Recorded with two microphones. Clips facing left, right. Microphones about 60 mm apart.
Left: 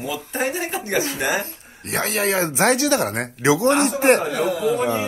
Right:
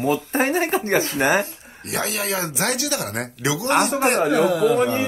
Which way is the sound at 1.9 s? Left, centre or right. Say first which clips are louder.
Left 4 dB; left.